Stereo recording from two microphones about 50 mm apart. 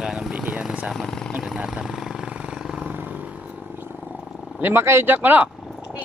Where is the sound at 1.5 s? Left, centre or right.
Centre.